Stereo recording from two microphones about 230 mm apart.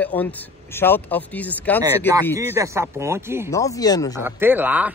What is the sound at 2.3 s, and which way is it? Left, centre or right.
Speech, centre.